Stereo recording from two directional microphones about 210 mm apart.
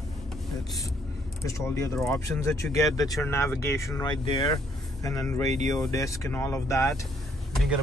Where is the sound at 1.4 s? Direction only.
15° left (ahead or behind).